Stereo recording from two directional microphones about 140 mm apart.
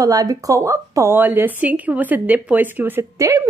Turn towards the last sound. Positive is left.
turn(degrees=-25)  # may be behind; listen again after turning